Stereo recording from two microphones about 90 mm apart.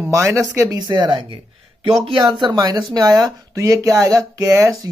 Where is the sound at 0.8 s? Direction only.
60° right (ahead or behind).